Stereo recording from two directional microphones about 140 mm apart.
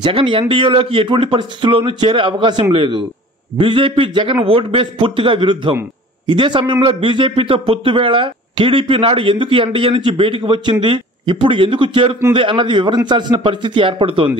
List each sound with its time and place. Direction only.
0.0 s a man's voice: 40° right (ahead or behind)